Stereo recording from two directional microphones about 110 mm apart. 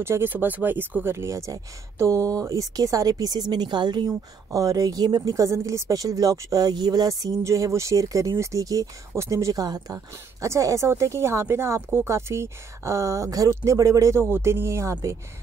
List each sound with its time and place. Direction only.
0.0 s a woman's voice: 20° right (ahead or behind); by 4.1 s 40° right (ahead or behind)
4.1 s a woman's voice: 30° right (ahead or behind)